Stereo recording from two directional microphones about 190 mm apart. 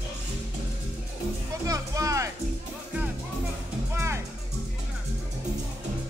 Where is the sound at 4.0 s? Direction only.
15° right (ahead or behind).